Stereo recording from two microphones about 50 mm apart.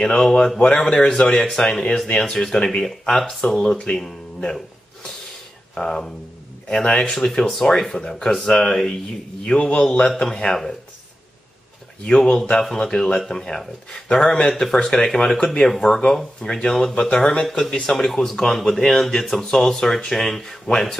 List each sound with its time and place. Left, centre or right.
0.0 s speech: centre
3.7 s speech: left
4.0 s speech: centre
5.8 s speech: centre
9.4 s speech: left
12.7 s speech: centre
17.9 s speech: centre